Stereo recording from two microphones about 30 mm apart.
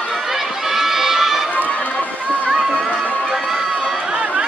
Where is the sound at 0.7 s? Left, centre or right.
Centre.